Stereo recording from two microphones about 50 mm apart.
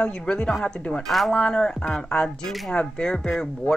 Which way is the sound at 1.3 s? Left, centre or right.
Centre.